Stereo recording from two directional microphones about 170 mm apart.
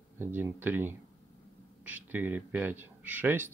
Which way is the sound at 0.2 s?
10° right (ahead or behind).